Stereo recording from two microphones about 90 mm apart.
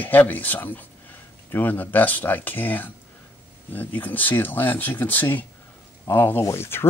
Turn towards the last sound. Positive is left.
turn(degrees=25)  # may be behind; listen again after turning